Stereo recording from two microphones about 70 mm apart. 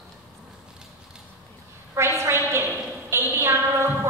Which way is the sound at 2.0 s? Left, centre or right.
Right.